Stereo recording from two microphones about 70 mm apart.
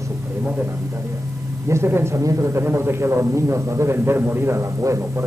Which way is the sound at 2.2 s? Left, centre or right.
Right.